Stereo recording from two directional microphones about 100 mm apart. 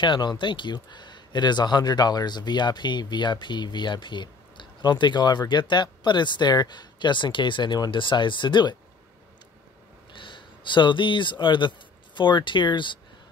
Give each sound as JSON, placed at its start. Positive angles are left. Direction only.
{"t": 0.0, "sound": "speech", "side_deg": 50}
{"t": 10.1, "sound": "speech", "side_deg": 55}